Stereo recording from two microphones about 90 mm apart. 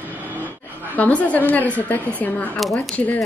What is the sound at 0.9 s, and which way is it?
A woman's voice, 15° left (ahead or behind).